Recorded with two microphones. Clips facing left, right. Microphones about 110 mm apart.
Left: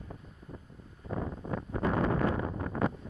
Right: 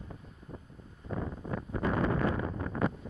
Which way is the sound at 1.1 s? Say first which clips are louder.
Left 1 dB; 25° left (ahead or behind).